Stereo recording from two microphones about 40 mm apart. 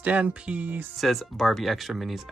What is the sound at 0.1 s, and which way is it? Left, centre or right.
Speech, right.